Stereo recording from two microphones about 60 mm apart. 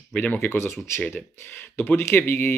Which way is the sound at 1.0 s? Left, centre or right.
Left.